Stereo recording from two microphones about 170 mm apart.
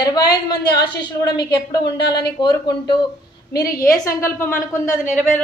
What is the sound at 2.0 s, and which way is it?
Speech, 75° left (ahead or behind).